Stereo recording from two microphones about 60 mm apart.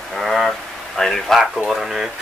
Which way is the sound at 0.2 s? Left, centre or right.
Centre.